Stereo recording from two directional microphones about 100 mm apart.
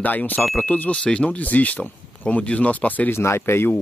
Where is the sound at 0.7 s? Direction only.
15° left (ahead or behind).